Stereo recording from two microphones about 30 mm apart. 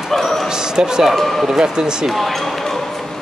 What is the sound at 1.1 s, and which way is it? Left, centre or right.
Speech, centre.